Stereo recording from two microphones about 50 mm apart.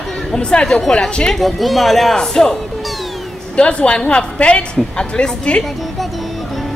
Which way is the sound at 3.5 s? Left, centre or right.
Left.